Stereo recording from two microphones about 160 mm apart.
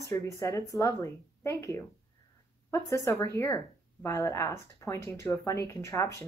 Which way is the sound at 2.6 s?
20° left (ahead or behind).